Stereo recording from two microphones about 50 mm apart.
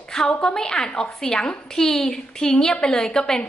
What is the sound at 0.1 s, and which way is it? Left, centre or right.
A woman's voice, centre.